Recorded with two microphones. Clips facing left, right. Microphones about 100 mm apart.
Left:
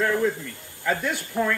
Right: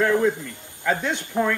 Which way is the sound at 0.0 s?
20° right (ahead or behind).